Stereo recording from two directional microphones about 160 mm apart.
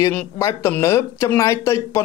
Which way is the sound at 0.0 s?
20° left (ahead or behind).